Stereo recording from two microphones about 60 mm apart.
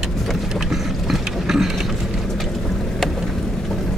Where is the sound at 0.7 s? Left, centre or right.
Centre.